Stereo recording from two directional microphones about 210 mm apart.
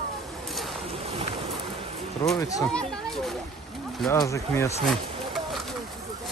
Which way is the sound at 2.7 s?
5° left (ahead or behind).